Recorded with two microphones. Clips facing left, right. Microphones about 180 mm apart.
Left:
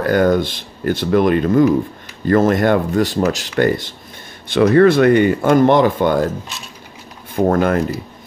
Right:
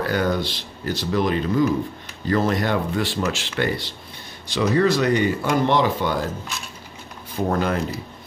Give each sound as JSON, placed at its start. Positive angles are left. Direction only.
{"t": 0.0, "sound": "speech", "side_deg": 50}
{"t": 4.5, "sound": "speech", "side_deg": 60}
{"t": 7.3, "sound": "speech", "side_deg": 55}